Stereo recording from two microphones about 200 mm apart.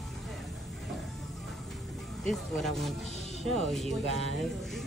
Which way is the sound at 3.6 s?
Centre (ahead or behind).